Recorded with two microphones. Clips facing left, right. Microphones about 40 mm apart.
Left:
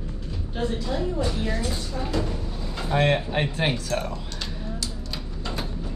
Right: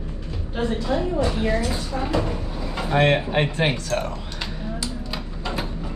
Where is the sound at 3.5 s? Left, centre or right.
Centre.